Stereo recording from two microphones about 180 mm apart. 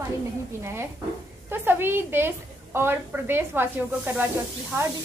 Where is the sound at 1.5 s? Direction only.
10° right (ahead or behind).